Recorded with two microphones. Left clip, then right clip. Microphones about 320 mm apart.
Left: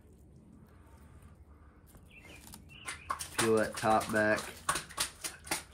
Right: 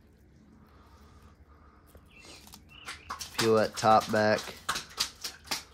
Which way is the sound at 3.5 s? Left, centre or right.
Right.